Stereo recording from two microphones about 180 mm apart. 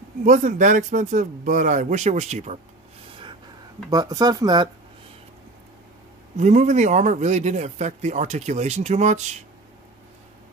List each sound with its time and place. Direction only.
0.2 s speech: 45° right (ahead or behind)
3.9 s speech: 20° right (ahead or behind)
6.3 s speech: 40° right (ahead or behind)